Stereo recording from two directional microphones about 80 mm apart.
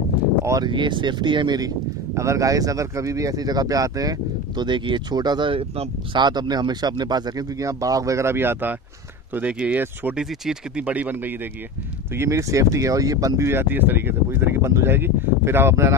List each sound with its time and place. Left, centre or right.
0.7 s speech: right
2.1 s speech: right
4.6 s speech: right
6.1 s speech: right
9.3 s speech: centre
10.8 s speech: centre
12.2 s speech: right
13.5 s speech: right